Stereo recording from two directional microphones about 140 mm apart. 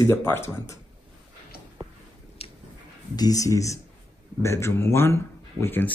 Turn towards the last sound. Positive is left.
turn(degrees=15)  # may be behind; listen again after turning